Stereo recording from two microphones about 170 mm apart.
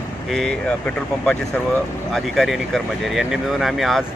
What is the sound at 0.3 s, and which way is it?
Speech, 5° left (ahead or behind).